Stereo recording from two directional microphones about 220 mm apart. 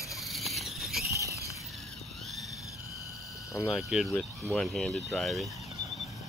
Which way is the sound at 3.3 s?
15° left (ahead or behind).